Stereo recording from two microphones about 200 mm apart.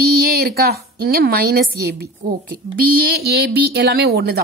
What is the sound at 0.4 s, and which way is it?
A woman's voice, 50° right (ahead or behind).